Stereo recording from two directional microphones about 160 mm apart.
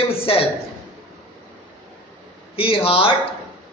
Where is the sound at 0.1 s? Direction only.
35° left (ahead or behind).